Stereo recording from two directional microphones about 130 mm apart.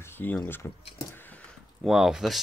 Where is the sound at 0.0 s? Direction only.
15° left (ahead or behind).